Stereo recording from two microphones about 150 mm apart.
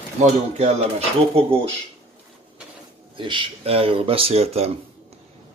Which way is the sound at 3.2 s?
35° right (ahead or behind).